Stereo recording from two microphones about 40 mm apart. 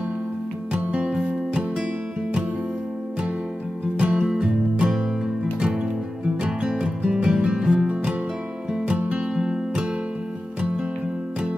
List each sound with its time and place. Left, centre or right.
4.0 s music: right
8.9 s music: right
9.2 s music: right